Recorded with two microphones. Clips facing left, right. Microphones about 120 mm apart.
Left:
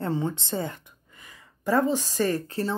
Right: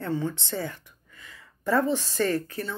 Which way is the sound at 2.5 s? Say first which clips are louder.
Left 5 dB; 30° left (ahead or behind).